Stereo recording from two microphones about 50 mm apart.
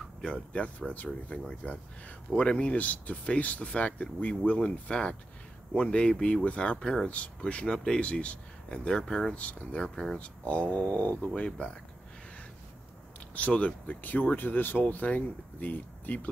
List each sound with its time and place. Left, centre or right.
0.2 s speech: left
8.0 s speech: left; by 9.3 s centre
9.3 s speech: left
10.2 s speech: left
13.3 s speech: left